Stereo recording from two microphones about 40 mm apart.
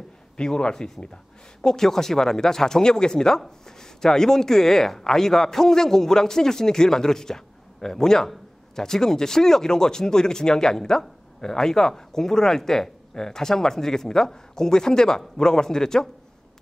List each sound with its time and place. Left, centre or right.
0.4 s speech: left